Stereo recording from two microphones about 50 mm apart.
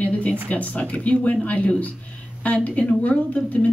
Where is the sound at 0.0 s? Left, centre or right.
Left.